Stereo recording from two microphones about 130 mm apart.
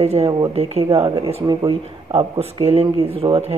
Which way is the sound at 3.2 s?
25° right (ahead or behind).